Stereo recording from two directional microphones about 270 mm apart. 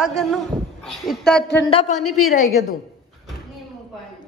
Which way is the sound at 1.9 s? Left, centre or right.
Left.